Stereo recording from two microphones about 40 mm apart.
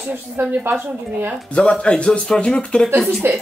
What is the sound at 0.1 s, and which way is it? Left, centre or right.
A woman's voice, right.